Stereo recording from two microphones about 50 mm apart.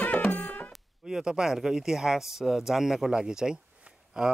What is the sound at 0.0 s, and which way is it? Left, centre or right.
Music, left.